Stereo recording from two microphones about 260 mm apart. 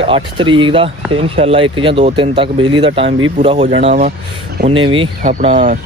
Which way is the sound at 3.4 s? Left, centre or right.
Right.